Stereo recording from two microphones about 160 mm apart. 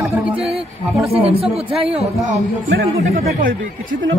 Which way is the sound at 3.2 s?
60° right (ahead or behind).